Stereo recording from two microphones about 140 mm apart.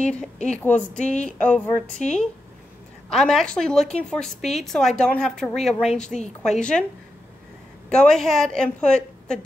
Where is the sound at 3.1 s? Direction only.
5° left (ahead or behind).